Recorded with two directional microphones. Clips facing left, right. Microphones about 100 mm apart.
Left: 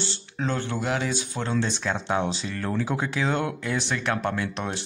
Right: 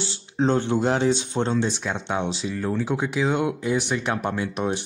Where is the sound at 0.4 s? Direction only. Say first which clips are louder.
Right 7 dB; 25° right (ahead or behind).